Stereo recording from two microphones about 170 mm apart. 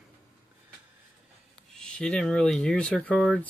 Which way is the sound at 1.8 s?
5° left (ahead or behind).